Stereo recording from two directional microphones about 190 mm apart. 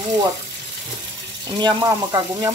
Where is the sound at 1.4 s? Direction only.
20° right (ahead or behind).